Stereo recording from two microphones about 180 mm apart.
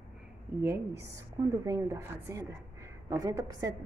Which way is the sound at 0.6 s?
15° right (ahead or behind).